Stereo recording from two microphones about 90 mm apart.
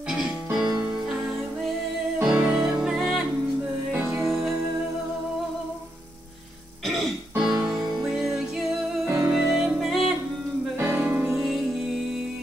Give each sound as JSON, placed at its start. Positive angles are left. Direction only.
{"t": 0.2, "sound": "music", "side_deg": -5}
{"t": 2.2, "sound": "music", "side_deg": -5}
{"t": 7.4, "sound": "music", "side_deg": -5}
{"t": 9.0, "sound": "music", "side_deg": -35}
{"t": 9.3, "sound": "music", "side_deg": -5}
{"t": 10.8, "sound": "music", "side_deg": -20}
{"t": 11.3, "sound": "music", "side_deg": 0}